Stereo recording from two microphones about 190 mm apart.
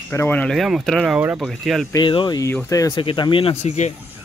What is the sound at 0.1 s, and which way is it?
Speech, 10° left (ahead or behind).